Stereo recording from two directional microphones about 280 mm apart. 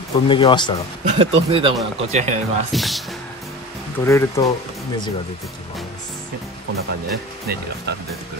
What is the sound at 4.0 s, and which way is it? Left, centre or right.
Speech, centre.